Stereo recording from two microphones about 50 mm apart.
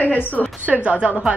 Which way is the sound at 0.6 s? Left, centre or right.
Right.